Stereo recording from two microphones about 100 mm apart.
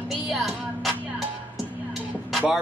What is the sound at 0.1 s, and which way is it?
Music, centre (ahead or behind).